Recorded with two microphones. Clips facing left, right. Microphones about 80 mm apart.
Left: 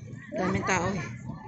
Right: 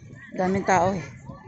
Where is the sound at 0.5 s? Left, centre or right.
Right.